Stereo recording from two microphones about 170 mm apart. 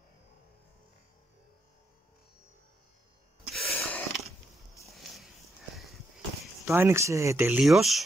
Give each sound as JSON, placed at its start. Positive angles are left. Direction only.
{"t": 3.5, "sound": "a sound", "side_deg": 0}
{"t": 6.6, "sound": "speech", "side_deg": -15}
{"t": 7.6, "sound": "speech", "side_deg": 0}